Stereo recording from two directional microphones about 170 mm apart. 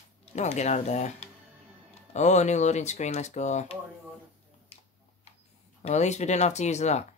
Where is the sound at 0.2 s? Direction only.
40° left (ahead or behind).